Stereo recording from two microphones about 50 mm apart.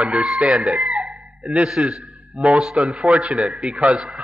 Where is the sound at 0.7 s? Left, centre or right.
Centre.